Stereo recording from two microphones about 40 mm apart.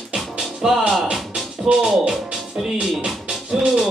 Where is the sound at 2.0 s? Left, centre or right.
Centre.